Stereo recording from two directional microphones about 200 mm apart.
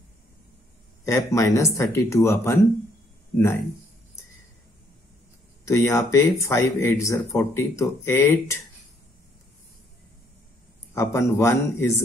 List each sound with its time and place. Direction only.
1.0 s speech: 15° left (ahead or behind)
5.7 s speech: 15° left (ahead or behind)
11.0 s speech: 15° left (ahead or behind)